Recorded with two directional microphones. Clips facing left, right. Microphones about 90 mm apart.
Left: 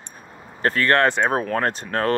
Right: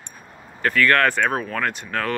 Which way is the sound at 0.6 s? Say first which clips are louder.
Even; 35° left (ahead or behind).